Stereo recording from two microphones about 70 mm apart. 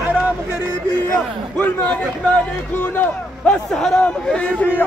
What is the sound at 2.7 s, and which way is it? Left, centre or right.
Speech, left.